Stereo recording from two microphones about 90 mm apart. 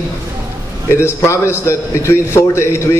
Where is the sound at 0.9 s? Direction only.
30° left (ahead or behind).